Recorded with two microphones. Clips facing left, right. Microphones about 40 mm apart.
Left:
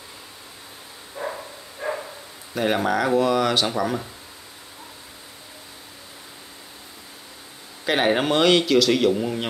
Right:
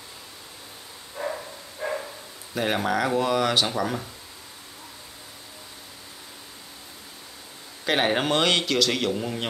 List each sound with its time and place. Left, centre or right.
1.1 s bow-wow: centre
2.5 s a man's voice: centre
7.8 s a man's voice: centre